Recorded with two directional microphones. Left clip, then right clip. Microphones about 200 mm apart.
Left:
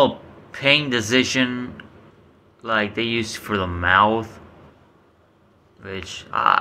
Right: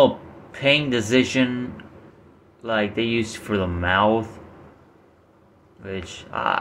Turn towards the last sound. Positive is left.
turn(degrees=-10)  # may be behind; listen again after turning